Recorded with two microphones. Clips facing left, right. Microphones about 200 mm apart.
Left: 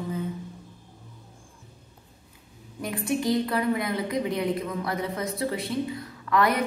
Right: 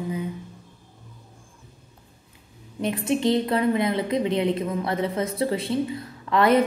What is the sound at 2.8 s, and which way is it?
A woman's voice, 25° right (ahead or behind).